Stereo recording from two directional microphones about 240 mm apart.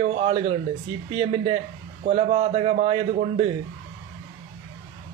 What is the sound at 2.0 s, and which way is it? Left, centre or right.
A man's voice, right.